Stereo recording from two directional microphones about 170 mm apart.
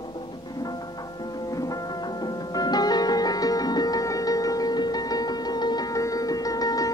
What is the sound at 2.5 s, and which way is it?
Music, 25° left (ahead or behind).